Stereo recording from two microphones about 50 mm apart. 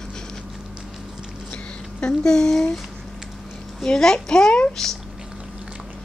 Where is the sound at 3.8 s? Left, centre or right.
Centre.